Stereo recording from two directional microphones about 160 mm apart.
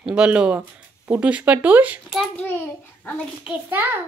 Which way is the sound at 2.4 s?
10° left (ahead or behind).